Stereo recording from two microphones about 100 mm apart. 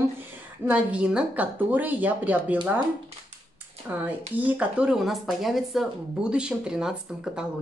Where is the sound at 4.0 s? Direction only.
15° right (ahead or behind).